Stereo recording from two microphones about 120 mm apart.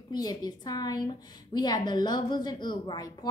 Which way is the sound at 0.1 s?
35° left (ahead or behind).